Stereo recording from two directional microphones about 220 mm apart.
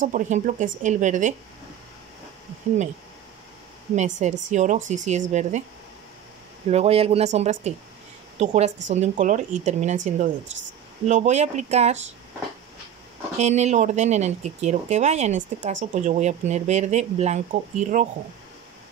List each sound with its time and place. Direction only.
0.0 s speech: 35° right (ahead or behind)
3.9 s speech: 30° right (ahead or behind)
6.7 s speech: 25° right (ahead or behind)
13.4 s speech: 30° right (ahead or behind)